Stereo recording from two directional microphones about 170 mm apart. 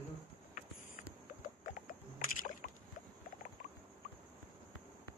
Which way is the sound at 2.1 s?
50° left (ahead or behind).